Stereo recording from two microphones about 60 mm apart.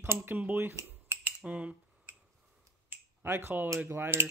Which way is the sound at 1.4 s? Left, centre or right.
Right.